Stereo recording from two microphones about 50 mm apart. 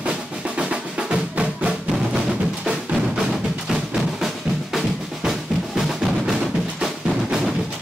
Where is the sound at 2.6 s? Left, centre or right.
Centre.